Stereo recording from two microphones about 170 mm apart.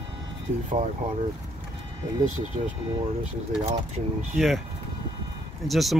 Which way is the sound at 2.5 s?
50° right (ahead or behind).